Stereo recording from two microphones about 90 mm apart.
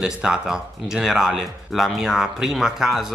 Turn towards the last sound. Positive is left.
turn(degrees=-5)  # may be behind; listen again after turning